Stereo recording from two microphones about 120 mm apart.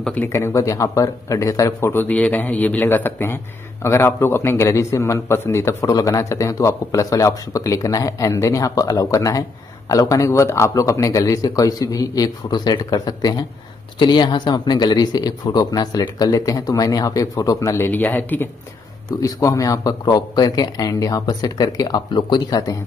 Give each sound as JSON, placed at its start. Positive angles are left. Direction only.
{"t": 0.0, "sound": "speech", "side_deg": 10}
{"t": 0.3, "sound": "a man's voice", "side_deg": 25}